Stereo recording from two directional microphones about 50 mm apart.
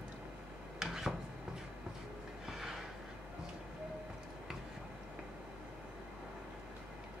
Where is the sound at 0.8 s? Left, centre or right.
Centre.